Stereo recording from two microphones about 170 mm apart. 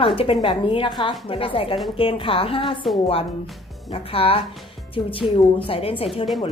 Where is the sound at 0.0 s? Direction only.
30° left (ahead or behind).